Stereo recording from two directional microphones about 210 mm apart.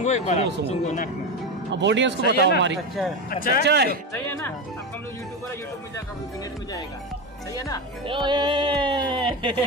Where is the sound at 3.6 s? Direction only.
50° right (ahead or behind).